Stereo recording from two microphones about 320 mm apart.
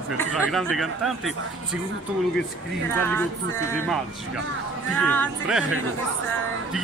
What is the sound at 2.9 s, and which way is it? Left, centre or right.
Speech, centre.